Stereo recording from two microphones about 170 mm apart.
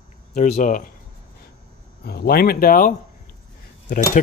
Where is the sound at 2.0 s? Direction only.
65° left (ahead or behind).